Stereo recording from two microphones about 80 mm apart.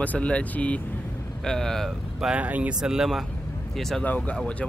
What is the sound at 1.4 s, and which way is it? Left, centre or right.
Speech, centre.